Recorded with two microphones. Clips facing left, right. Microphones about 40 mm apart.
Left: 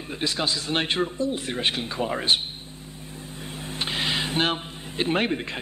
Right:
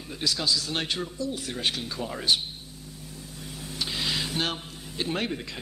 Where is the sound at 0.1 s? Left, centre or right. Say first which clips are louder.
Left 1 dB; left.